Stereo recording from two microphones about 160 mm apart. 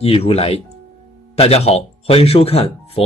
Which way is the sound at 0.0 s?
40° left (ahead or behind).